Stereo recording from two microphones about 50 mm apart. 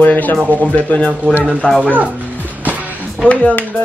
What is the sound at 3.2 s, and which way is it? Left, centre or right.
Speech, left.